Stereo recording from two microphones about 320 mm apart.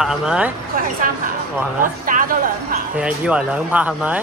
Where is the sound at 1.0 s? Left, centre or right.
Right.